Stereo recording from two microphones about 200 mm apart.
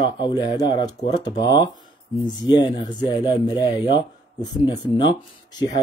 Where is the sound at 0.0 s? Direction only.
20° left (ahead or behind).